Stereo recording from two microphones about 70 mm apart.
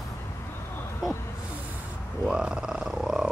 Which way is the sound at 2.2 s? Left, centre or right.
Centre.